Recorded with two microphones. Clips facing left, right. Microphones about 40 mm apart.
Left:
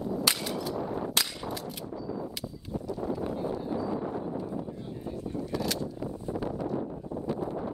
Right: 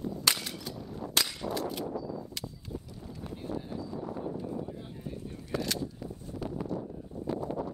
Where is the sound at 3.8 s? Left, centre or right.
Left.